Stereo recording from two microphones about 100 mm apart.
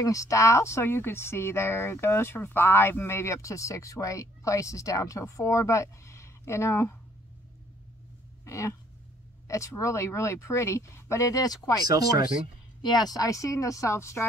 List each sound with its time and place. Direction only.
0.0 s speech: 35° left (ahead or behind)
8.5 s speech: 30° left (ahead or behind)
11.9 s speech: 40° right (ahead or behind)
12.8 s speech: 45° left (ahead or behind); by 14.2 s 30° left (ahead or behind)